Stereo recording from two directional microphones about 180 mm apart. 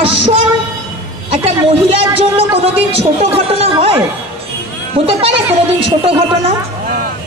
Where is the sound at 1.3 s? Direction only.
30° right (ahead or behind).